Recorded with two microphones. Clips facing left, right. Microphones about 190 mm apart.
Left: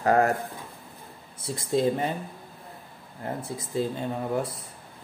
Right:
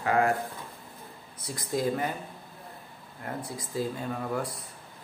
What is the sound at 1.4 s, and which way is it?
Speech, 25° left (ahead or behind).